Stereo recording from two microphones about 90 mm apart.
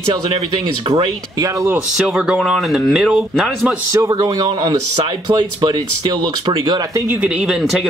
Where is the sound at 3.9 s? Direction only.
40° right (ahead or behind); by 6.8 s 55° right (ahead or behind).